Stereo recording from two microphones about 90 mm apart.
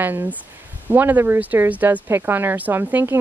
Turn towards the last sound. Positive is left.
turn(degrees=-25)  # may be behind; listen again after turning